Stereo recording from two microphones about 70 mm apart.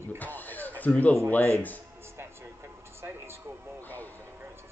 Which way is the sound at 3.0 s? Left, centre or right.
Right.